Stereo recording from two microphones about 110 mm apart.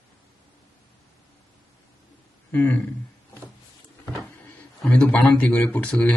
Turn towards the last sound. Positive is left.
turn(degrees=10)  # may be behind; listen again after turning